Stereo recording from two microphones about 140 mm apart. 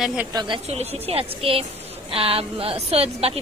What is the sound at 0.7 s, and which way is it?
Speech, 45° right (ahead or behind).